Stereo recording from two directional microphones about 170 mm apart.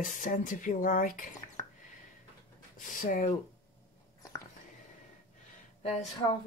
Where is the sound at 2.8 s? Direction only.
55° left (ahead or behind).